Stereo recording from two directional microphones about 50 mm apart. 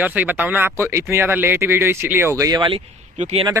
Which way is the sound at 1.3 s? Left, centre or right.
Right.